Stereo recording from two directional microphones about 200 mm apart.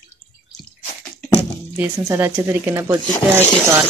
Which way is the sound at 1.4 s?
10° right (ahead or behind).